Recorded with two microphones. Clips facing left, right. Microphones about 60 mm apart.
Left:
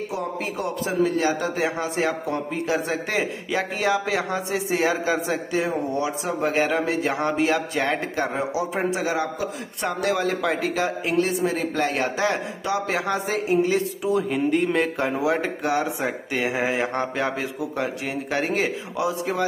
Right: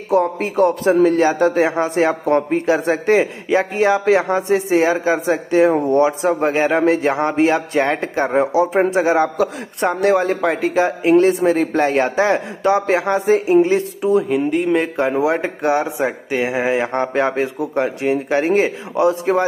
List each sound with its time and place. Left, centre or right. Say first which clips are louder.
0.1 s a man's voice: right 11 dB; right
2.2 s a man's voice: right 11 dB; right
2.6 s speech: right 8 dB; right
5.7 s speech: right 10 dB; right
6.0 s speech: right 8 dB; right
6.5 s speech: right 5 dB; right
6.8 s speech: right 8 dB; right
11.1 s speech: right 9 dB; right
14.3 s speech: right 5 dB; centre
14.8 s speech: right 5 dB; centre
16.1 s speech: right 5 dB; centre; by 19.4 s right